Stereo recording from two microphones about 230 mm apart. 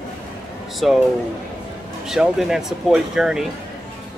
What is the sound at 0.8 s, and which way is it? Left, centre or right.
Speech, centre.